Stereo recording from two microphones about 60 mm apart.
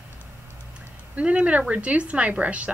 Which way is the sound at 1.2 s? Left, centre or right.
Right.